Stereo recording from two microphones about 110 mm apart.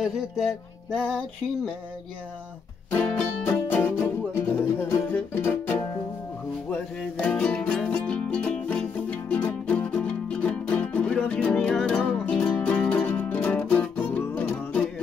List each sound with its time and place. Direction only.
0.9 s music: 5° left (ahead or behind)
2.9 s music: 20° left (ahead or behind)